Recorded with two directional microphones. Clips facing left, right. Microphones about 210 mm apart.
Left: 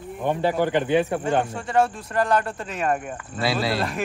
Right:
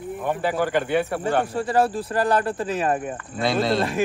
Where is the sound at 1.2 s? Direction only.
35° right (ahead or behind).